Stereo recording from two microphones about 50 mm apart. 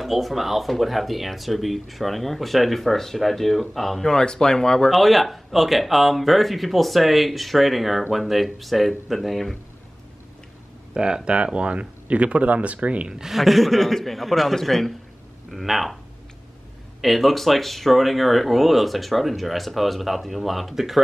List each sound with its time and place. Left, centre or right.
0.0 s speech: centre
4.9 s speech: centre
11.0 s speech: centre
13.1 s speech: centre
13.4 s speech: centre
17.0 s speech: centre